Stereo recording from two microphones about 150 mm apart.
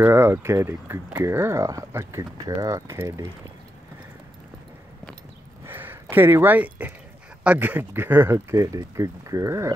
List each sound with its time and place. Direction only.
0.0 s speech: 15° right (ahead or behind)
5.7 s speech: 15° right (ahead or behind)